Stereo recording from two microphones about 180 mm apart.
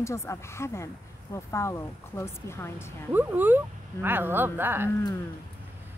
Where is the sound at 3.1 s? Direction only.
10° right (ahead or behind).